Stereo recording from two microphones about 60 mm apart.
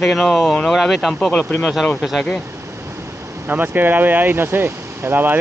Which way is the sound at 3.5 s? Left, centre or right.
Right.